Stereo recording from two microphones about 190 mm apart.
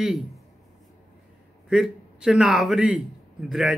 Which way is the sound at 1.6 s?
Centre (ahead or behind).